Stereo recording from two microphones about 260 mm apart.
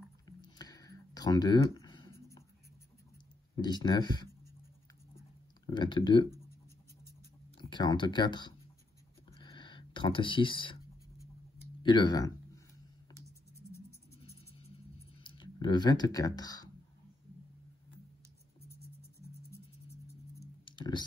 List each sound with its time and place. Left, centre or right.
0.4 s a sound: centre
3.5 s speech: centre
5.7 s speech: centre
7.5 s speech: centre
9.3 s a sound: centre
11.8 s speech: centre
14.2 s music: left
15.2 s speech: centre
20.3 s clicking: centre